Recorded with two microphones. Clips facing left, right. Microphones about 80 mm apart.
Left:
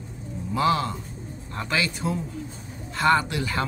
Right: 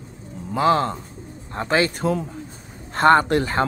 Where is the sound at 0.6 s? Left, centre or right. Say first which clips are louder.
Right 4 dB; right.